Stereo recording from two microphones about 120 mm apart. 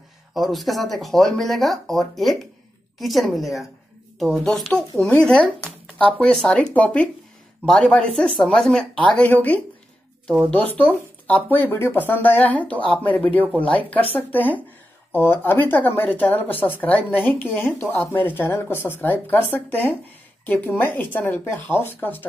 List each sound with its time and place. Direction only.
0.3 s a woman's voice: centre (ahead or behind); by 22.2 s 20° left (ahead or behind)